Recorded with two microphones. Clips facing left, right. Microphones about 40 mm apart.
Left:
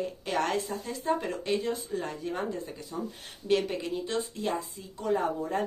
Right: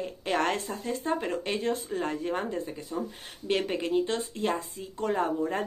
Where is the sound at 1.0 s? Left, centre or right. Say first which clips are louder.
Left 2 dB; centre.